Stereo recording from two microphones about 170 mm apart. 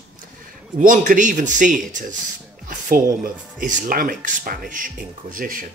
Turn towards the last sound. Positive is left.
turn(degrees=-55)  # may be behind; listen again after turning